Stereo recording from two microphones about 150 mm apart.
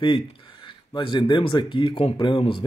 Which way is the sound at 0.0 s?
35° left (ahead or behind).